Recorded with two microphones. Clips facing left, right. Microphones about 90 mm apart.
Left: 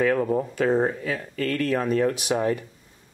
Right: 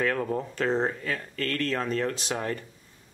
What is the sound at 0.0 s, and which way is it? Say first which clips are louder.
Speech: left 5 dB; 5° left (ahead or behind).